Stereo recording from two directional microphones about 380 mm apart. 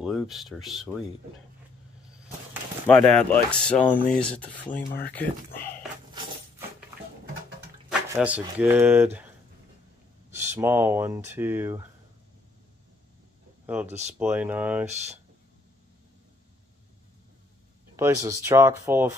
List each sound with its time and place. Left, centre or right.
0.0 s speech: centre
2.9 s speech: centre
8.1 s speech: centre
10.3 s speech: centre
13.8 s speech: centre
14.1 s speech: centre
17.9 s speech: centre